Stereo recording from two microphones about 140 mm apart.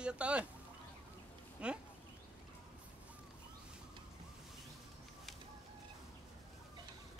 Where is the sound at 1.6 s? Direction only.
5° right (ahead or behind).